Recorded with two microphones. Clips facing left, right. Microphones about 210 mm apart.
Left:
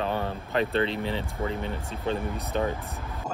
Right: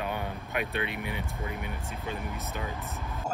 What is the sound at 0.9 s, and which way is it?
Speech, 30° left (ahead or behind).